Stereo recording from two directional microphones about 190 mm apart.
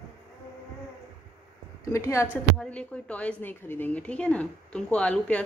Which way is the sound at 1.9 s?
15° left (ahead or behind).